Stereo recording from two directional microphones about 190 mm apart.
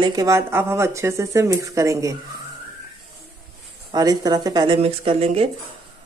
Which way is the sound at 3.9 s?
20° right (ahead or behind).